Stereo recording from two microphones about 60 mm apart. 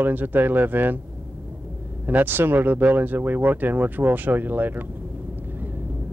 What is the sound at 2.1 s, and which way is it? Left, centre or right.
Speech, right.